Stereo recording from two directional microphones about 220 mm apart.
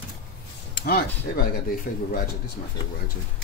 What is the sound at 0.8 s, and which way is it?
Speech, 40° left (ahead or behind).